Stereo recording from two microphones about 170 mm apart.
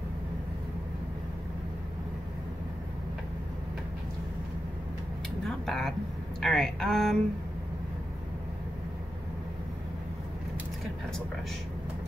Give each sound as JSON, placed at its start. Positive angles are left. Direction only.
{"t": 5.7, "sound": "a woman's voice", "side_deg": 0}